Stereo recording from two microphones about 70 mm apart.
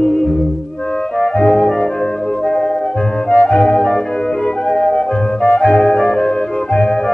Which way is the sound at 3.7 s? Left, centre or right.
Centre.